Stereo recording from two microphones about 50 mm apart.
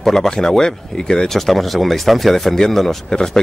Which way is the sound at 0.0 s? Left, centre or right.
Centre.